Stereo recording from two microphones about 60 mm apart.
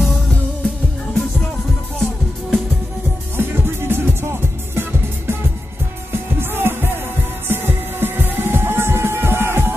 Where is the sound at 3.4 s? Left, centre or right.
Right.